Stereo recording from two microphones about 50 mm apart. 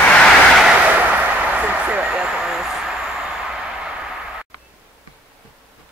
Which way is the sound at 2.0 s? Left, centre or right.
Centre.